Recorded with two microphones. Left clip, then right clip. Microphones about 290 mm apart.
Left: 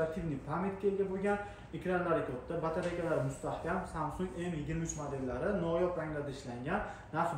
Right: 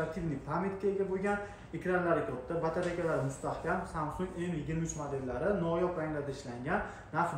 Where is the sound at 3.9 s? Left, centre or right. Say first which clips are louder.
Right 1 dB; centre.